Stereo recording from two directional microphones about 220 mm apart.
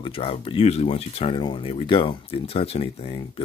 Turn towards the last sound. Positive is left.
turn(degrees=25)  # may be behind; listen again after turning